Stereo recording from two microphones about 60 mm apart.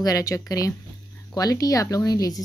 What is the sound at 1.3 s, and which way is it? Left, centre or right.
Speech, left.